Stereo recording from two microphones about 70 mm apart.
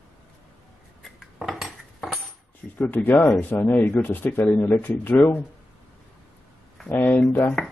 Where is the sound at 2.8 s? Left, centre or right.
Left.